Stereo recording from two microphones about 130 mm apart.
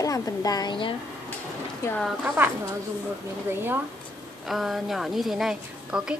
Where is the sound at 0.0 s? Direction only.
25° left (ahead or behind).